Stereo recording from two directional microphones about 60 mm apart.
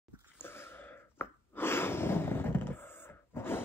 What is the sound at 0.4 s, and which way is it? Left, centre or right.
Gasp, left.